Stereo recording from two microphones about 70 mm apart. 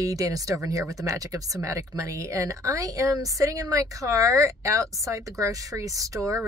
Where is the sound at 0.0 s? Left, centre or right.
Right.